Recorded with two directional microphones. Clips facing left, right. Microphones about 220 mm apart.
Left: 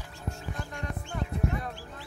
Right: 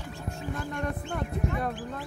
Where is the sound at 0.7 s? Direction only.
60° right (ahead or behind).